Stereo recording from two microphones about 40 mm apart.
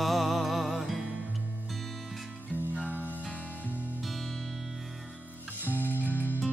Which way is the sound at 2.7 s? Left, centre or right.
Right.